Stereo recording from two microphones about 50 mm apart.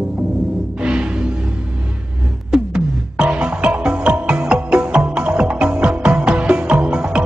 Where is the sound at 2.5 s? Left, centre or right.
Centre.